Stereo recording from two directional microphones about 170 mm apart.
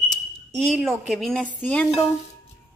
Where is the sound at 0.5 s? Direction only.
Centre (ahead or behind).